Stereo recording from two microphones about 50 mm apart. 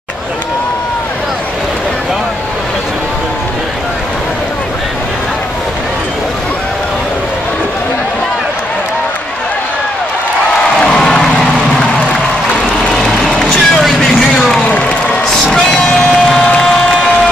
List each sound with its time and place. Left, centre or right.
10.8 s music: centre
12.9 s music: centre
13.8 s vehicle: centre
14.4 s a sound: centre
14.7 s a sound: left
15.5 s music: centre
16.4 s crowd: centre